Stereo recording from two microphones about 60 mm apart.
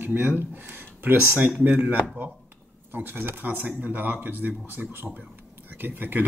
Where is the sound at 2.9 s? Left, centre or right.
Right.